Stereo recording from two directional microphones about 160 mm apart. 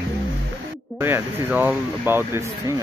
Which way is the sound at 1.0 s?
15° right (ahead or behind).